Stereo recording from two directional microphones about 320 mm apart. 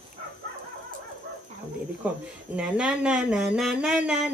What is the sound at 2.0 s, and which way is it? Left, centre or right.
Speech, centre.